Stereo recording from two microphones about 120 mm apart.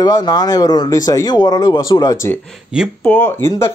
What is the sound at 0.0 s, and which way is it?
Speech, 35° left (ahead or behind).